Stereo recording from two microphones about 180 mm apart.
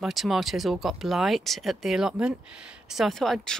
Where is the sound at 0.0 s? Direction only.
Centre (ahead or behind).